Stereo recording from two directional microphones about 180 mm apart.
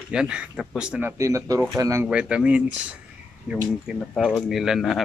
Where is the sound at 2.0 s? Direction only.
5° right (ahead or behind).